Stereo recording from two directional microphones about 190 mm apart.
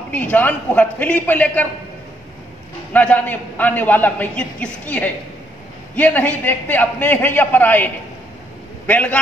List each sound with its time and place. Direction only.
0.1 s a man's voice: 10° left (ahead or behind)
2.9 s a man's voice: 10° left (ahead or behind)